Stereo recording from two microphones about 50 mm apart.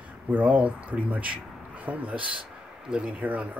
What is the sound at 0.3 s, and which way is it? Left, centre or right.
A man's voice, right.